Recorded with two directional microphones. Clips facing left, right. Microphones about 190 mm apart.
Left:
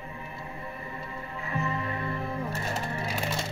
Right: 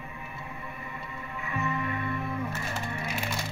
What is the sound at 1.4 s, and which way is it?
Music, 30° left (ahead or behind).